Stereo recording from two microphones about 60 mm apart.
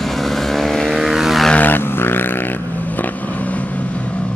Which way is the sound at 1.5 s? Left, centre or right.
Left.